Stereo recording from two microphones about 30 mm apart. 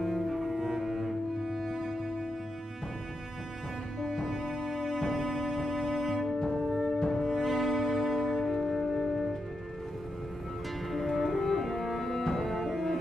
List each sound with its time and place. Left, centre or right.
0.0 s cello: centre
1.5 s music: centre
4.0 s cello: centre
4.3 s music: centre
6.4 s music: centre
10.9 s music: centre